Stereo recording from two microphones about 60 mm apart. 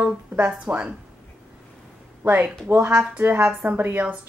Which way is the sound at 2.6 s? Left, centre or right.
Right.